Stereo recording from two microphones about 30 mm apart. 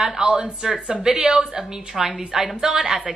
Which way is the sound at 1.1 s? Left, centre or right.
Right.